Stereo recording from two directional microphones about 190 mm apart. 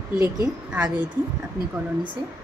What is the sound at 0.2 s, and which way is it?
Speech, 15° right (ahead or behind).